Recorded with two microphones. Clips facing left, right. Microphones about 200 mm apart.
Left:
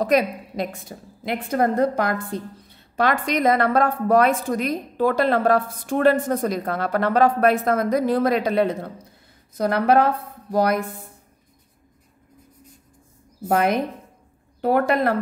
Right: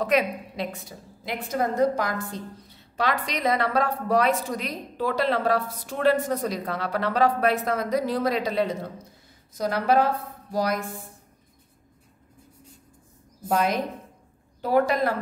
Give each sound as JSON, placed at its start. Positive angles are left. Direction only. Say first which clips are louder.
{"t": 0.0, "sound": "a woman's voice", "louder": "left 4 dB", "side_deg": 40}
{"t": 13.5, "sound": "a woman's voice", "louder": "left 4 dB", "side_deg": 60}